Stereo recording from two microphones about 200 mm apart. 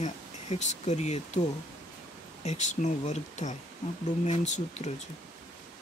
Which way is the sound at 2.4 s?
35° left (ahead or behind).